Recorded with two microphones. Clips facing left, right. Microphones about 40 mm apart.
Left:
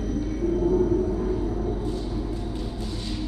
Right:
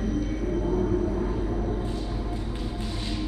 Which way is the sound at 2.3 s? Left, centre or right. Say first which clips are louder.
Left 1 dB; right.